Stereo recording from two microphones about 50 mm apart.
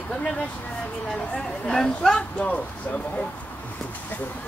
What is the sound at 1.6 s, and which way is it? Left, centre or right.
Speech, centre.